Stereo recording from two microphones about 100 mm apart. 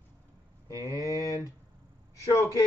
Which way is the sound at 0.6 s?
35° left (ahead or behind).